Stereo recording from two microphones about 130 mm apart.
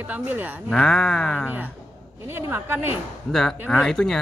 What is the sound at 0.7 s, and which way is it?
Speech, 5° left (ahead or behind).